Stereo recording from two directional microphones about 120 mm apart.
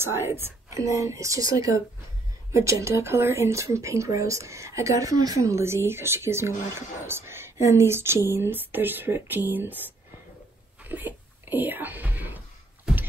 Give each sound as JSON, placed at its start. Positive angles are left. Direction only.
{"t": 0.0, "sound": "speech", "side_deg": -20}
{"t": 10.8, "sound": "whispering", "side_deg": -15}